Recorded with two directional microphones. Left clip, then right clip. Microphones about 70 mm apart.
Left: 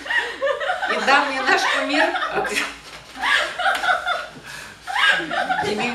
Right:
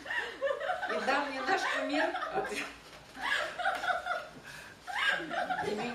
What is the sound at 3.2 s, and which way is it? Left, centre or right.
Snicker, right.